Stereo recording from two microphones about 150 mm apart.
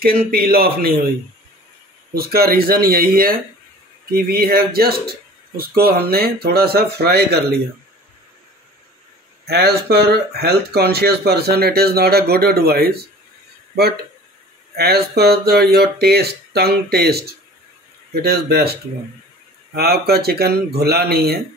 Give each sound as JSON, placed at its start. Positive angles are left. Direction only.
{"t": 0.0, "sound": "speech", "side_deg": -85}
{"t": 2.1, "sound": "speech", "side_deg": -90}
{"t": 9.5, "sound": "speech", "side_deg": -90}
{"t": 14.8, "sound": "speech", "side_deg": -90}